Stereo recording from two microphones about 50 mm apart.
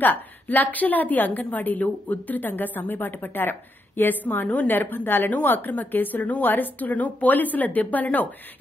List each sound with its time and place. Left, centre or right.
0.0 s a woman's voice: left